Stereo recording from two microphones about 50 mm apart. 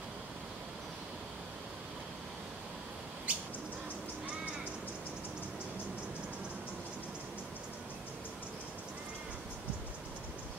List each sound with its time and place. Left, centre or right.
3.3 s bird: right